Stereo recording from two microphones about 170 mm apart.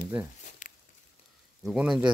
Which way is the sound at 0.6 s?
50° left (ahead or behind).